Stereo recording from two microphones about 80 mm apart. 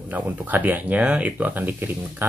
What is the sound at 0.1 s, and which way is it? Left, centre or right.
Speech, right.